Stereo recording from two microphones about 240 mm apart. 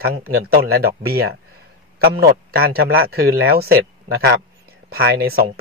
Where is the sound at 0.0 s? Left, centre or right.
Right.